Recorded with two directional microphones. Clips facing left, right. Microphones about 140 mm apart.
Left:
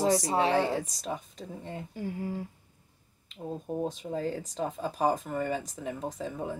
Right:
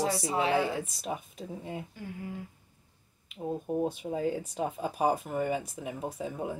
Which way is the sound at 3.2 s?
5° right (ahead or behind).